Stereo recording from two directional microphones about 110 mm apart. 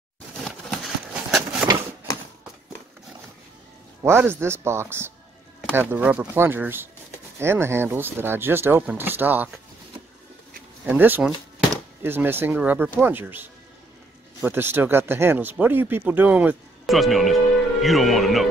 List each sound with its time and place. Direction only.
0.4 s a sound: centre (ahead or behind)
4.0 s speech: 20° right (ahead or behind)
10.9 s speech: 15° right (ahead or behind)
16.8 s speech: centre (ahead or behind)